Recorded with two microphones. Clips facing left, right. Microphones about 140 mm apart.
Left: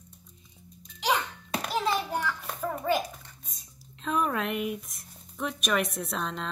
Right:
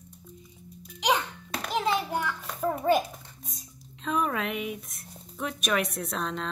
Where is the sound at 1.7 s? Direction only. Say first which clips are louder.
Right 2 dB; 15° right (ahead or behind).